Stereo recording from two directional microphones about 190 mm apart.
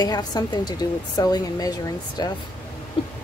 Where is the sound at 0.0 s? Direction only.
20° left (ahead or behind).